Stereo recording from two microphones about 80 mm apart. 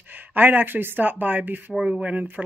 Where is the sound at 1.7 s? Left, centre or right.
Centre.